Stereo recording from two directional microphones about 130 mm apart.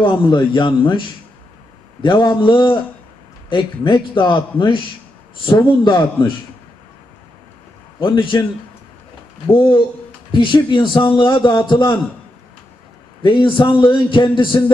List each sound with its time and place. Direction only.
0.0 s a man's voice: 40° left (ahead or behind)
8.0 s a man's voice: 35° left (ahead or behind)
9.5 s a man's voice: 40° left (ahead or behind)
13.2 s a man's voice: 40° left (ahead or behind)